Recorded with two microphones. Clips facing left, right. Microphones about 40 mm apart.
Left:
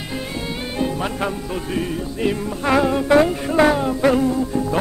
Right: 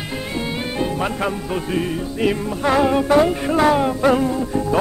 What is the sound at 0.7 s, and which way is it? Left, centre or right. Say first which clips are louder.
Music: even; centre.